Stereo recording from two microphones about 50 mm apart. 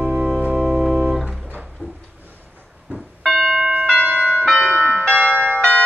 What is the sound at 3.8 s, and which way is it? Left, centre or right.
Church bell, centre.